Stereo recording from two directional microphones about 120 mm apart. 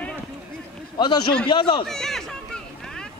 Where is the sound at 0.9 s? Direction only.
35° left (ahead or behind).